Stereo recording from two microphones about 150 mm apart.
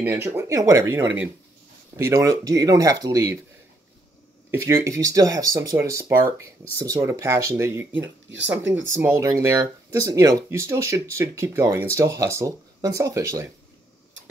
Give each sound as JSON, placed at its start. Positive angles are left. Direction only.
{"t": 0.0, "sound": "speech", "side_deg": -15}
{"t": 4.5, "sound": "speech", "side_deg": -15}